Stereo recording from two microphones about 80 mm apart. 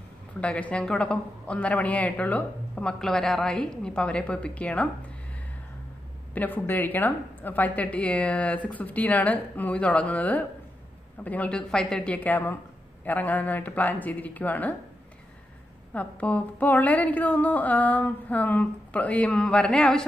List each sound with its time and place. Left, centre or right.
0.4 s a woman's voice: centre
6.3 s a woman's voice: left
15.9 s a woman's voice: centre